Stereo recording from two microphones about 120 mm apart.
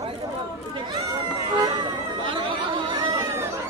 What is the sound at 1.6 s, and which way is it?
Music, 40° right (ahead or behind).